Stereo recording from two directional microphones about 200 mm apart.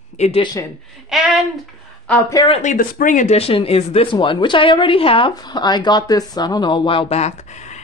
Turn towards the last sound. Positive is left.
turn(degrees=35)  # may be behind; listen again after turning